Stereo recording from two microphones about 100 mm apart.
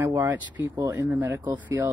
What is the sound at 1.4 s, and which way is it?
Speech, 40° right (ahead or behind).